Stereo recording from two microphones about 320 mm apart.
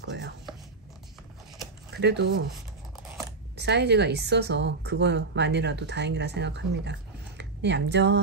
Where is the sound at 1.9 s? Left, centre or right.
Right.